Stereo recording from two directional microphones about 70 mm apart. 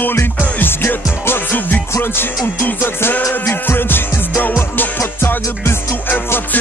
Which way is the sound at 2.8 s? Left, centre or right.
Left.